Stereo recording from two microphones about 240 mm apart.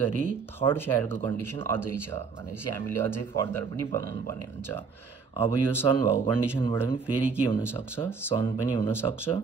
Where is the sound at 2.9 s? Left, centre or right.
Right.